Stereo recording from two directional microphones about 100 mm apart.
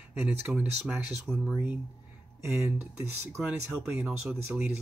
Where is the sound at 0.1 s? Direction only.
20° right (ahead or behind).